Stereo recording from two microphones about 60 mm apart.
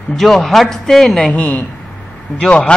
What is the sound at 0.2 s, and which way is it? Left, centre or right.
A man's voice, centre.